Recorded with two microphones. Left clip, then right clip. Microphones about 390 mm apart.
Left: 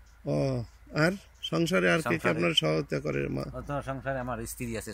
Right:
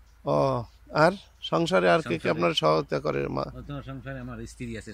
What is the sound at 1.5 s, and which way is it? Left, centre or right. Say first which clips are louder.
Speech: right 4 dB; centre.